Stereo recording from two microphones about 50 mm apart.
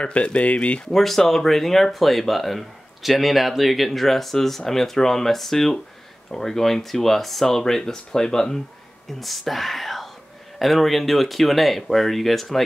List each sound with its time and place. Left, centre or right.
0.0 s speech: left
0.9 s speech: centre
9.2 s speech: centre